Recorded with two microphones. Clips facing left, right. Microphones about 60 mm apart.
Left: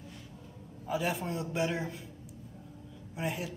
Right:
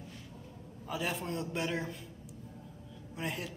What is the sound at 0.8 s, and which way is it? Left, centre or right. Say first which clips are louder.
A man's voice: left 3 dB; centre.